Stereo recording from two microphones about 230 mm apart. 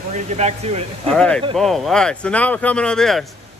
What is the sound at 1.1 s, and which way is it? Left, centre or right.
Speech, centre.